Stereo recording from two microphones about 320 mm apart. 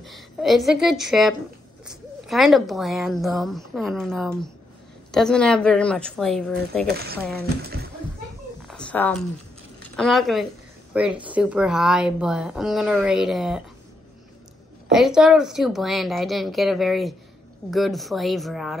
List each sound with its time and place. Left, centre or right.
0.0 s a woman's voice: centre
7.3 s speech: right
8.6 s cat: centre
9.9 s a woman's voice: centre
14.9 s a woman's voice: centre